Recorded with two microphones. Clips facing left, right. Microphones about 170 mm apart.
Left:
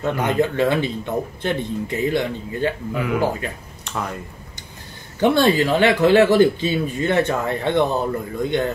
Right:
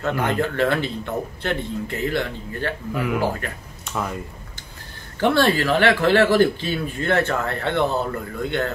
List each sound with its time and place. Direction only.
0.0 s speech: 15° left (ahead or behind)
2.9 s speech: centre (ahead or behind)
5.2 s speech: 15° left (ahead or behind)